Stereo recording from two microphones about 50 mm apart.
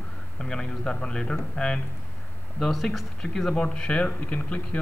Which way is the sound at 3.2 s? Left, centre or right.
Centre.